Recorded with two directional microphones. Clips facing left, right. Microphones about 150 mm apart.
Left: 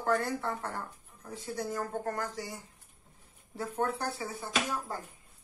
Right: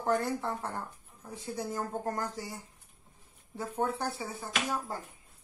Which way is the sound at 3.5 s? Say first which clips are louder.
Even; 20° right (ahead or behind).